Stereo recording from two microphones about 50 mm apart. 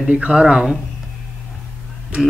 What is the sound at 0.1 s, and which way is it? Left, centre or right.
Speech, centre.